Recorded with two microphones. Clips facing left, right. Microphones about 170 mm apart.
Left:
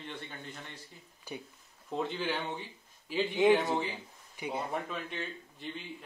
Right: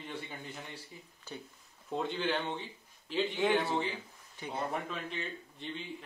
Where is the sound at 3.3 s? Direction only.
20° left (ahead or behind).